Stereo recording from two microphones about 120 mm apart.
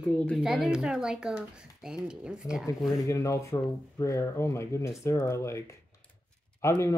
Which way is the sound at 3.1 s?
25° left (ahead or behind).